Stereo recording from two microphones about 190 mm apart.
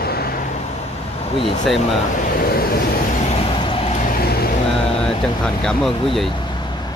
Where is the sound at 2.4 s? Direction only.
50° left (ahead or behind).